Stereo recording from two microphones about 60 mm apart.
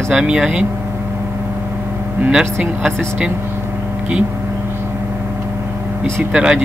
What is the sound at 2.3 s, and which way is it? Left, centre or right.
Speech, centre.